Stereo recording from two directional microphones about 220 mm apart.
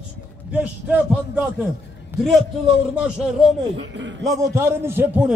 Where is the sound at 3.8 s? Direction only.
55° right (ahead or behind).